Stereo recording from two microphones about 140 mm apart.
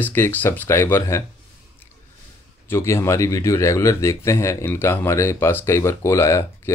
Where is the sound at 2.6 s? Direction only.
20° left (ahead or behind).